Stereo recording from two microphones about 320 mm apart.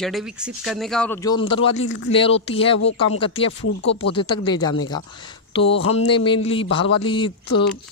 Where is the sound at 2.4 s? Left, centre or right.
Centre.